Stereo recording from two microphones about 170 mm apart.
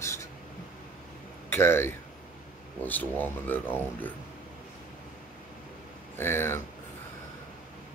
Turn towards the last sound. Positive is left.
turn(degrees=15)  # may be behind; listen again after turning